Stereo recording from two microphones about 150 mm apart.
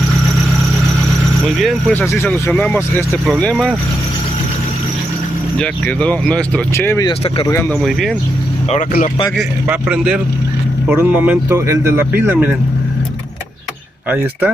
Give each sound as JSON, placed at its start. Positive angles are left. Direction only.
{"t": 1.6, "sound": "speech", "side_deg": 10}
{"t": 5.6, "sound": "speech", "side_deg": 5}
{"t": 9.7, "sound": "speech", "side_deg": -10}